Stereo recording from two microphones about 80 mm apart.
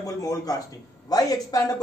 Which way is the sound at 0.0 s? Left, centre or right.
Left.